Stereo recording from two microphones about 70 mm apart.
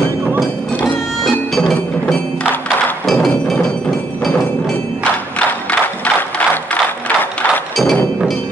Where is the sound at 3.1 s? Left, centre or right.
Centre.